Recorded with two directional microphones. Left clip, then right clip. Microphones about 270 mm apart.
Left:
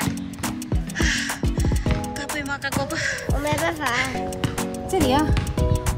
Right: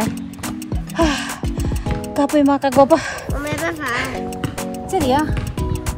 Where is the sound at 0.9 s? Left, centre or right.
Centre.